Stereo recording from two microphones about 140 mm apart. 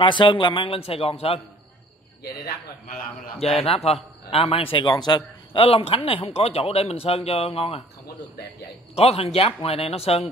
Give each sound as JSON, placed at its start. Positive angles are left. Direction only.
{"t": 0.0, "sound": "a man's voice", "side_deg": 35}
{"t": 2.4, "sound": "speech", "side_deg": 90}
{"t": 3.3, "sound": "a man's voice", "side_deg": 45}
{"t": 8.9, "sound": "a man's voice", "side_deg": 45}